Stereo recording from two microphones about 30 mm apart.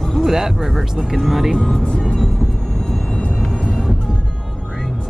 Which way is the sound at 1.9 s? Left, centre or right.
Left.